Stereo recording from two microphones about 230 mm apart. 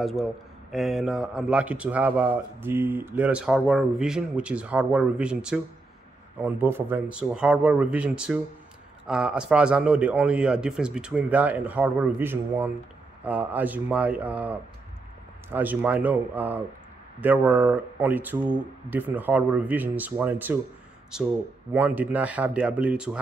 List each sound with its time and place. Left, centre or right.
0.0 s a man's voice: centre
21.7 s speech: centre